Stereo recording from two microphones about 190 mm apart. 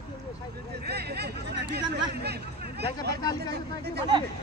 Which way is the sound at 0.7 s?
60° right (ahead or behind).